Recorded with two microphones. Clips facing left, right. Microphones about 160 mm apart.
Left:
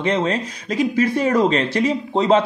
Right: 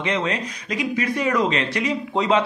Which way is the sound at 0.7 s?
30° left (ahead or behind).